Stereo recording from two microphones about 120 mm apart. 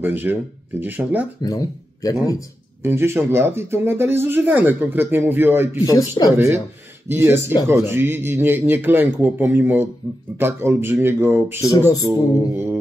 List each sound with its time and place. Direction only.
0.0 s speech: 15° right (ahead or behind)
1.4 s speech: 30° left (ahead or behind)
2.8 s speech: 20° right (ahead or behind)
5.9 s a sound: 30° left (ahead or behind)
6.3 s speech: 20° right (ahead or behind)
11.6 s a sound: 25° left (ahead or behind)